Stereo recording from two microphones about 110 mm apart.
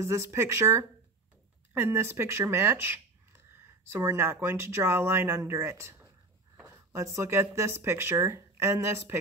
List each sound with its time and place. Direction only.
0.0 s speech: 25° right (ahead or behind)
5.9 s a sound: 15° right (ahead or behind)
6.6 s speech: 30° right (ahead or behind)